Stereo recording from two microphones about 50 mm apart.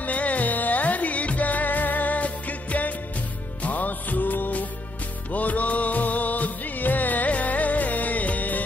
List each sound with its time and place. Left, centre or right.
0.0 s music: left